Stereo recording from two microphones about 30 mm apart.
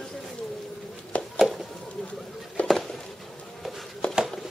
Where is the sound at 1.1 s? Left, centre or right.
Left.